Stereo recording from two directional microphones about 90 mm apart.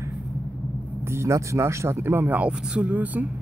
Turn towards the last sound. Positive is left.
turn(degrees=-20)  # may be behind; listen again after turning